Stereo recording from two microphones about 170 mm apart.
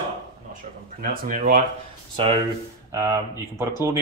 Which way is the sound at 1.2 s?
55° right (ahead or behind).